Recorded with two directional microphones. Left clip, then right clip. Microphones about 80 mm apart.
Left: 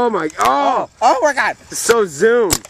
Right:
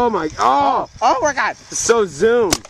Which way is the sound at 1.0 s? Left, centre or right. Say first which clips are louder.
Left 4 dB; left.